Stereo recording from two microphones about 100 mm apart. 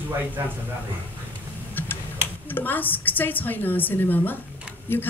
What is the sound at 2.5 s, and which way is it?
A man's voice, 20° left (ahead or behind).